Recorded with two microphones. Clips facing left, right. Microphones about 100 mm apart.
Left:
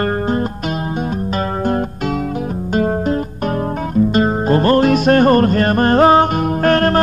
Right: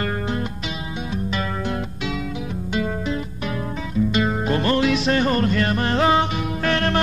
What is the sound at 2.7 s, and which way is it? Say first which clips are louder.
Music: left 8 dB; 45° left (ahead or behind).